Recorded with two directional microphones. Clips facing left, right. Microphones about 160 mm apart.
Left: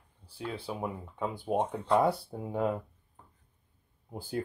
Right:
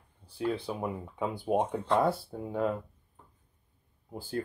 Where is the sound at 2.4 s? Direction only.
15° left (ahead or behind).